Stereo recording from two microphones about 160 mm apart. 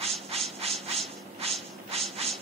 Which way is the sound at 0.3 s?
40° right (ahead or behind).